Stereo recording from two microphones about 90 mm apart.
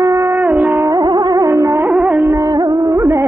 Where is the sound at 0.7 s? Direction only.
50° right (ahead or behind).